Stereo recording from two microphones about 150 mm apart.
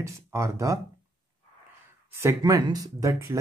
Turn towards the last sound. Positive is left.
turn(degrees=-20)  # may be behind; listen again after turning